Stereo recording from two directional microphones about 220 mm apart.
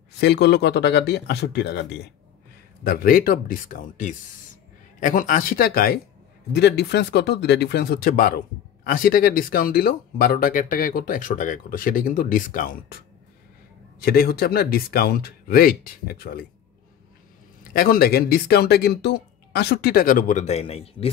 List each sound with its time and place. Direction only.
0.2 s speech: 50° left (ahead or behind)
17.7 s speech: 40° left (ahead or behind); by 21.1 s 25° left (ahead or behind)